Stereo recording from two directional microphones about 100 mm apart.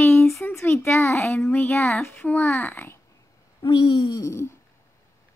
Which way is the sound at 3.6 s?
40° left (ahead or behind).